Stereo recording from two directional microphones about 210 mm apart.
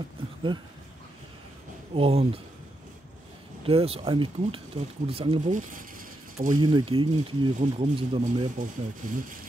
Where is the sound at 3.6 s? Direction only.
30° right (ahead or behind).